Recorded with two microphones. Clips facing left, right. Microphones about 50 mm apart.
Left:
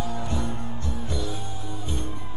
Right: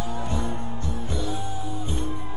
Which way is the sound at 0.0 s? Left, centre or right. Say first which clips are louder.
Even; right.